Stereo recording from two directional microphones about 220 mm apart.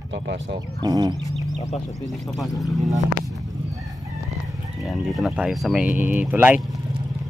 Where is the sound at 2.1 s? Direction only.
Centre (ahead or behind).